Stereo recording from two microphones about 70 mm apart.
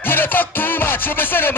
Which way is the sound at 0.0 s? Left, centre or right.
Left.